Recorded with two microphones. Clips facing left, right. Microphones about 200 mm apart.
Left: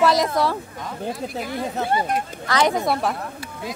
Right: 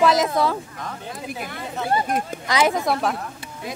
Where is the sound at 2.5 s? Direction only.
5° right (ahead or behind).